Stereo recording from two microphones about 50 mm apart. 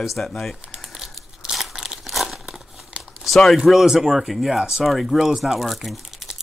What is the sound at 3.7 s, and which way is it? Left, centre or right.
Speech, centre.